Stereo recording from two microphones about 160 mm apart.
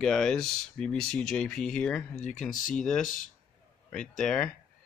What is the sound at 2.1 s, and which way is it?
Speech, 50° left (ahead or behind).